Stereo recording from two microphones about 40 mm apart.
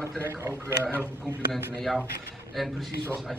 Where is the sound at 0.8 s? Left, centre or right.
Right.